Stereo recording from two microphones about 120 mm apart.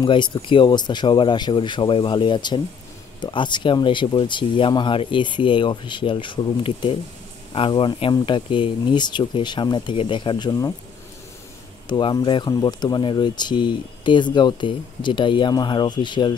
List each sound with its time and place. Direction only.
0.0 s speech: 40° left (ahead or behind)
11.9 s speech: 40° left (ahead or behind)